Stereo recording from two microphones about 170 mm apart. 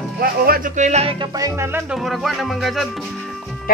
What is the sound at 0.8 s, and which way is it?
Music, 40° right (ahead or behind).